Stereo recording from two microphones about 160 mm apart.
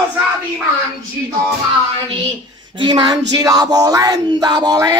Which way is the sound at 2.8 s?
25° right (ahead or behind).